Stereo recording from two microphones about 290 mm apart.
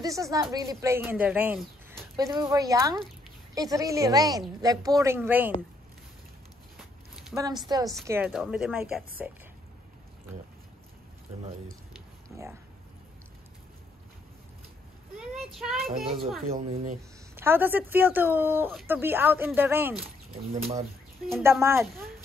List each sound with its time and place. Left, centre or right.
0.0 s speech: centre
6.8 s a sound: centre
7.4 s a woman's voice: centre
12.3 s a sound: centre
15.1 s child singing: centre
16.5 s speech: right
17.4 s speech: centre
21.3 s speech: centre